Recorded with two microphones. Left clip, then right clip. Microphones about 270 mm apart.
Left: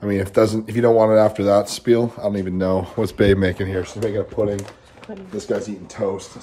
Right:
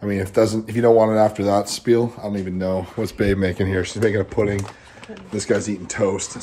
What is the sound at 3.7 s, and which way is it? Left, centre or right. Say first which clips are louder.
Speech: right 3 dB; right.